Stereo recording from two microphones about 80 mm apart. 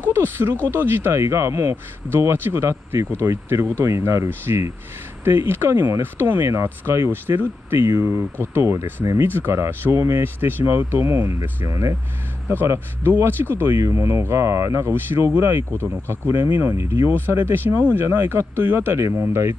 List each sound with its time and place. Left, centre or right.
0.1 s speech: right
12.4 s speech: right